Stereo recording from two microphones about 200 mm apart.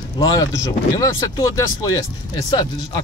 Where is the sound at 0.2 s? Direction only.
20° left (ahead or behind).